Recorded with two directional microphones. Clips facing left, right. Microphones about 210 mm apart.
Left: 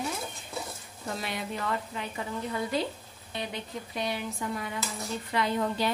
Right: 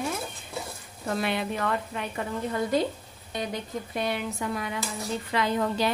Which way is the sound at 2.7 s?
45° right (ahead or behind).